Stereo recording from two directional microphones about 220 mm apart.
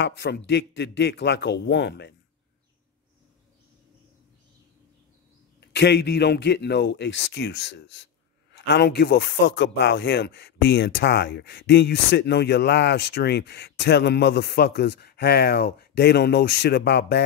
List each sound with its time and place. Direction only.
0.0 s speech: 50° left (ahead or behind)
5.6 s speech: 50° left (ahead or behind)